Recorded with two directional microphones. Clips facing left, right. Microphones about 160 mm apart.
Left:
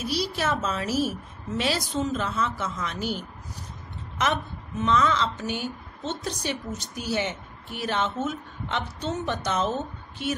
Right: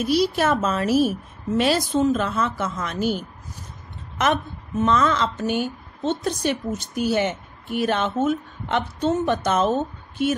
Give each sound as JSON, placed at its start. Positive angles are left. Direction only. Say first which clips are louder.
{"t": 0.0, "sound": "a woman's voice", "louder": "right 8 dB", "side_deg": -50}
{"t": 4.2, "sound": "a woman's voice", "louder": "right 5 dB", "side_deg": -50}